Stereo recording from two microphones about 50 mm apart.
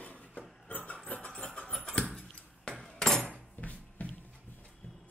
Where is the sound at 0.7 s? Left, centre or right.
Left.